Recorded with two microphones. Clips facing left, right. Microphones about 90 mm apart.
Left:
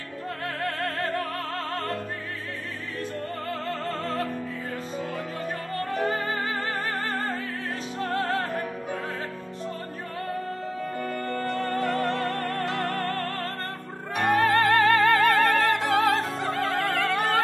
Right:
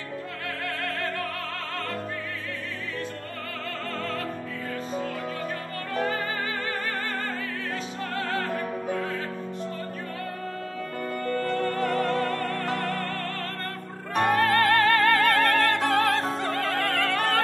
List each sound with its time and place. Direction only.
0.7 s music: 35° left (ahead or behind)
8.0 s music: 30° left (ahead or behind)
11.4 s music: 40° left (ahead or behind)
14.3 s music: centre (ahead or behind)